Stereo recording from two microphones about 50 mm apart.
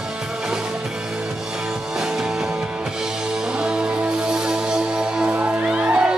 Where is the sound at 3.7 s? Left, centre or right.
Centre.